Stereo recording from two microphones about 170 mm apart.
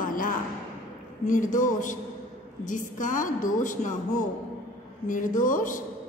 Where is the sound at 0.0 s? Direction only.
50° left (ahead or behind).